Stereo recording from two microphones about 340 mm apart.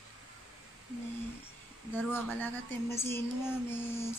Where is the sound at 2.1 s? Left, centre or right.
Centre.